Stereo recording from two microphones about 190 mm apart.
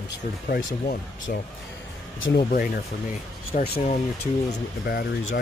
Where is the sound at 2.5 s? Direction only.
50° left (ahead or behind).